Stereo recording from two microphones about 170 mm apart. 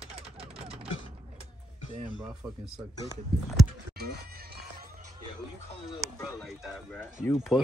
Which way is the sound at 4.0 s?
65° right (ahead or behind).